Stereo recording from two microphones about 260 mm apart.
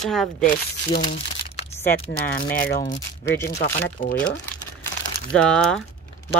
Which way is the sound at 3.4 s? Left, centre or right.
Left.